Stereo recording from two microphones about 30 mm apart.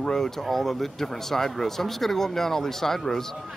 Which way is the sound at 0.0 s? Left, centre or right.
Centre.